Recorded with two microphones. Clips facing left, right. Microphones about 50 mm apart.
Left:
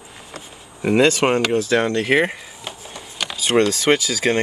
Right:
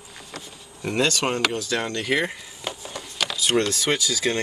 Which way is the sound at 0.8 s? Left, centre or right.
Left.